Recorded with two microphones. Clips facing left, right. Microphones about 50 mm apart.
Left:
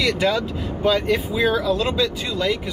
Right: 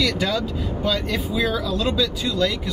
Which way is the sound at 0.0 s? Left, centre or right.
Left.